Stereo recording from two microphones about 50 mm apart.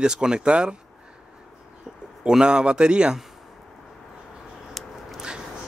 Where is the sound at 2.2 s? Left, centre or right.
Centre.